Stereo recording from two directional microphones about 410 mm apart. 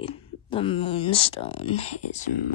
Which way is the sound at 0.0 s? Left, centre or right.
Centre.